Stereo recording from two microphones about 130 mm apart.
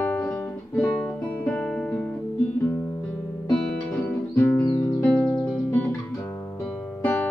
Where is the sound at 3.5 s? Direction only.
15° left (ahead or behind).